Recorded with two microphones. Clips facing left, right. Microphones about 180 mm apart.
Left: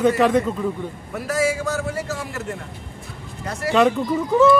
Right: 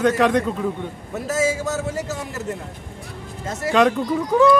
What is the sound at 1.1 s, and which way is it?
A man's voice, 20° right (ahead or behind).